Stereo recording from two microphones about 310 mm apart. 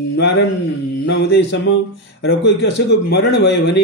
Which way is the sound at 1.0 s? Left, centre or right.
Left.